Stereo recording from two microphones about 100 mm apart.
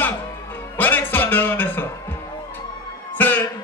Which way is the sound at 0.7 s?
20° left (ahead or behind).